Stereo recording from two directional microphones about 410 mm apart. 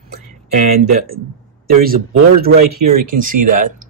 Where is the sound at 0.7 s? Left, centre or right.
Right.